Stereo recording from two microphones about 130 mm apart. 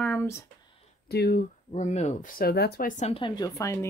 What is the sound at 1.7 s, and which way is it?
Speech, 60° left (ahead or behind).